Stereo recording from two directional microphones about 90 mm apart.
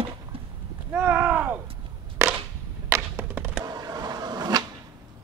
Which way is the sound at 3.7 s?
45° right (ahead or behind).